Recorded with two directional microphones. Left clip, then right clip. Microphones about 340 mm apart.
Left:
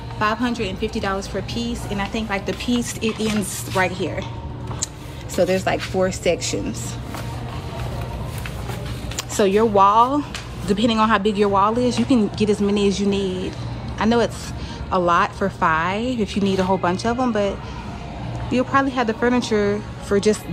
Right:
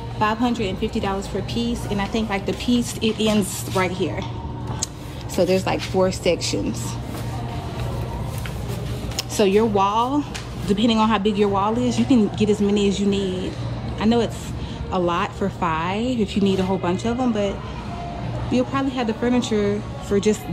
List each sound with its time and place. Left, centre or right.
0.2 s a woman's voice: centre
5.3 s a woman's voice: centre
9.4 s a woman's voice: centre
10.7 s a woman's voice: centre
11.4 s a sound: centre
11.8 s a woman's voice: centre
12.6 s a sound: centre
13.9 s a woman's voice: centre
15.9 s a woman's voice: centre
16.4 s a woman's voice: centre
17.0 s a sound: centre
18.5 s a woman's voice: centre